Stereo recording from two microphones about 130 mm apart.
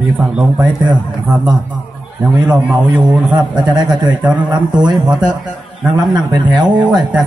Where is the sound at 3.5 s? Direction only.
35° right (ahead or behind).